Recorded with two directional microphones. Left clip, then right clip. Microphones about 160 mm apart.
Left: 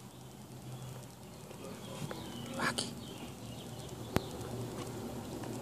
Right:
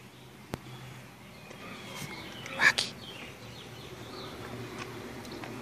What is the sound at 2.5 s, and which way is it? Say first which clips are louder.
Duck: right 11 dB; centre (ahead or behind).